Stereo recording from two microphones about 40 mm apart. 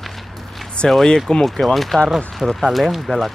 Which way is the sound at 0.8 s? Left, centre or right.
Centre.